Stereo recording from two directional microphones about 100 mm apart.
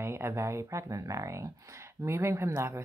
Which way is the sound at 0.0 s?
25° right (ahead or behind).